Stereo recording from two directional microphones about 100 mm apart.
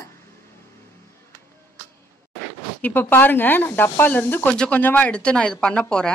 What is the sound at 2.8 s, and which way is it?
Speech, 20° left (ahead or behind).